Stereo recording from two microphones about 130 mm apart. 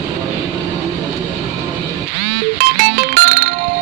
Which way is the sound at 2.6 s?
90° right.